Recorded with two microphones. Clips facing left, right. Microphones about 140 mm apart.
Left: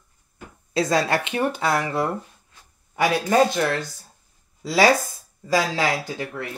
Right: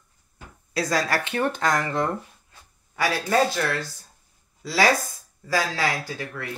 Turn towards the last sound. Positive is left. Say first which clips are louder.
# left 3 dB
turn(degrees=20)  # may be behind; listen again after turning